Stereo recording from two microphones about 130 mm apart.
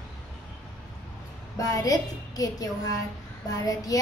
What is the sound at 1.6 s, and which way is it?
A child's voice, 25° left (ahead or behind).